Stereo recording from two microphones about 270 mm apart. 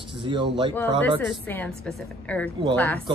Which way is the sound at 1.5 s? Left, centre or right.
Centre.